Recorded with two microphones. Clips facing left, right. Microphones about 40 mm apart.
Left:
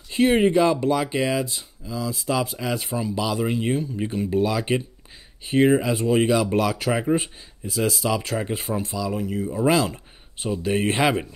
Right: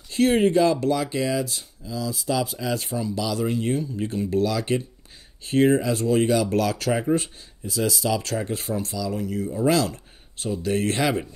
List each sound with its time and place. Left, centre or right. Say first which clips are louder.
0.1 s speech: left 1 dB; left